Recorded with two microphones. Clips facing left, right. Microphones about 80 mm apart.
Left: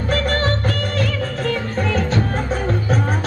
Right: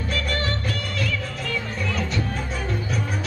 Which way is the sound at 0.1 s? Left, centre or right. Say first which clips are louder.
Left 8 dB; left.